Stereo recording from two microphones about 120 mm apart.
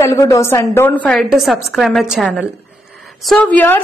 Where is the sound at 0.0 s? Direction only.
25° left (ahead or behind).